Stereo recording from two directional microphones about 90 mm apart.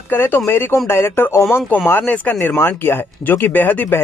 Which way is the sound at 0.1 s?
20° left (ahead or behind).